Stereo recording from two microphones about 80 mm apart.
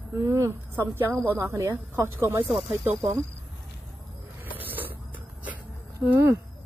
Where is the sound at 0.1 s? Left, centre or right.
Right.